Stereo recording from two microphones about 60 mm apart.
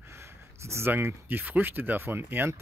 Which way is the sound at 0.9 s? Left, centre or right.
Right.